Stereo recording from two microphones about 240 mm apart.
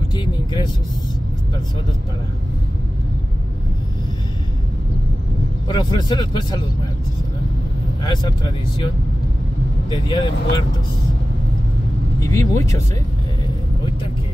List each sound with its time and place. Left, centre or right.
0.1 s speech: centre
5.7 s a man's voice: centre
10.0 s speech: centre
12.2 s a man's voice: centre